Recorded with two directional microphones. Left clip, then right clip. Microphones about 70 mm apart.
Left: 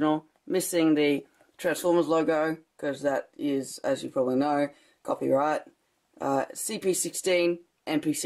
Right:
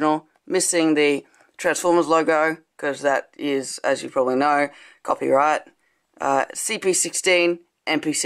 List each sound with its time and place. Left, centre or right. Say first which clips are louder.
0.0 s speech: right 6 dB; right